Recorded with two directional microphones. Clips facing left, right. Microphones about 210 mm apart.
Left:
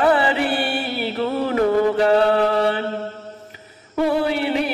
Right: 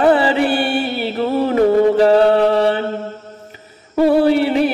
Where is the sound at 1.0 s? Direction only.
30° right (ahead or behind).